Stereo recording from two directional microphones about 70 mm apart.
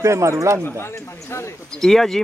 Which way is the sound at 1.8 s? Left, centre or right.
Centre.